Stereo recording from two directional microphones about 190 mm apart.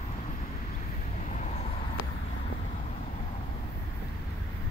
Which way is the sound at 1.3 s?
40° left (ahead or behind).